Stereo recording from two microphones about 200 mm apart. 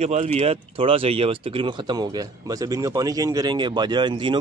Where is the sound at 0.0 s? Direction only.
35° right (ahead or behind).